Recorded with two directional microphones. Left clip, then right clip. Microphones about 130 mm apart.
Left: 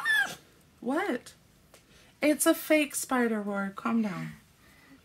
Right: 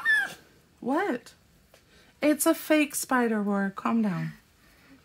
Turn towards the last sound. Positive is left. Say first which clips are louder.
# right 3 dB
turn(degrees=-40)  # may be behind; listen again after turning